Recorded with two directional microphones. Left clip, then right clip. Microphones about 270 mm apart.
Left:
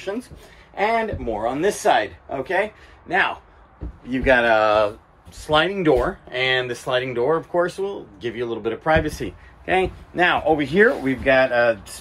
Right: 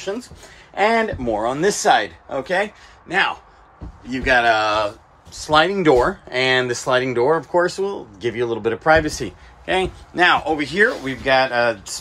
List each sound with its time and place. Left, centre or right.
0.7 s speech: right; by 12.0 s centre